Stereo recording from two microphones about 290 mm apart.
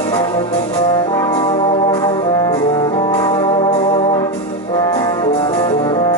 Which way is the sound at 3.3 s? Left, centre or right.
Centre.